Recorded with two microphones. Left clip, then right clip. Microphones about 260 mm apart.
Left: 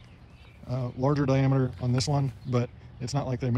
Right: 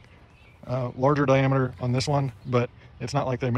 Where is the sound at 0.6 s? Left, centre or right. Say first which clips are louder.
Right 6 dB; centre.